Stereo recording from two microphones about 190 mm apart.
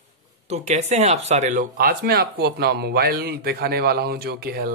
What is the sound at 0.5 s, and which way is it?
Speech, 35° right (ahead or behind).